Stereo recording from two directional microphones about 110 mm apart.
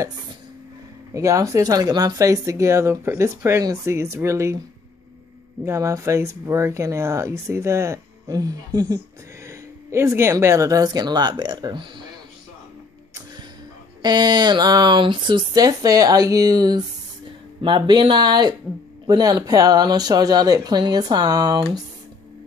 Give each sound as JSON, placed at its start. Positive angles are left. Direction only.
{"t": 1.1, "sound": "speech", "side_deg": -30}
{"t": 5.7, "sound": "speech", "side_deg": -30}
{"t": 13.1, "sound": "a sound", "side_deg": -35}
{"t": 14.0, "sound": "speech", "side_deg": -40}